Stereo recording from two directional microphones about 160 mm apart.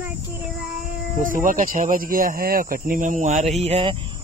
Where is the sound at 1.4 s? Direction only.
60° right (ahead or behind).